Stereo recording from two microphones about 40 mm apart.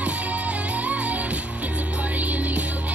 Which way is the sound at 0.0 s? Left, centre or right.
Right.